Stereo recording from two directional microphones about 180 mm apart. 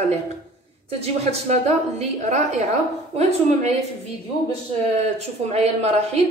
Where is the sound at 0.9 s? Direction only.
35° right (ahead or behind).